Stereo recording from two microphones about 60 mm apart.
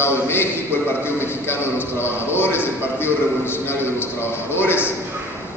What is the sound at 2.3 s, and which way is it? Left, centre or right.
A man's voice, left.